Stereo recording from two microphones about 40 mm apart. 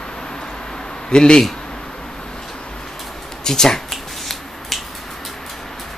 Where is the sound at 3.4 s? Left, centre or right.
Centre.